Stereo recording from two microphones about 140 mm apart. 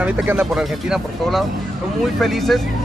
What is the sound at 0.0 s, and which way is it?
Speech, 10° right (ahead or behind).